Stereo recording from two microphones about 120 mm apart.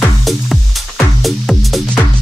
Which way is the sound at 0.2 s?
Centre (ahead or behind).